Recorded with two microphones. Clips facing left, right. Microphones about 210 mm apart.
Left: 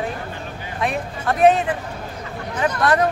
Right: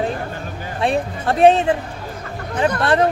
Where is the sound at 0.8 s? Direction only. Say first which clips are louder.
Right 5 dB; 30° right (ahead or behind).